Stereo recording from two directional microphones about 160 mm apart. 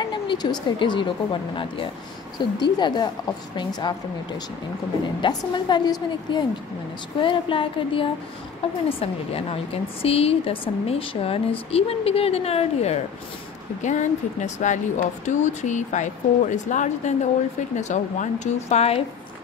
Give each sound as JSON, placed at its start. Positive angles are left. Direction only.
{"t": 0.0, "sound": "a woman's voice", "side_deg": 30}
{"t": 5.0, "sound": "a woman's voice", "side_deg": 30}